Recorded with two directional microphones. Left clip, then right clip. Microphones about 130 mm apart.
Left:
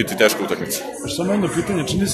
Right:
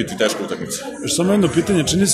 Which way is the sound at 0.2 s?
25° left (ahead or behind).